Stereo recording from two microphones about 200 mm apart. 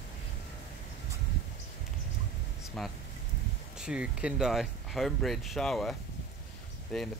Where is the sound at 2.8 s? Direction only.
Centre (ahead or behind).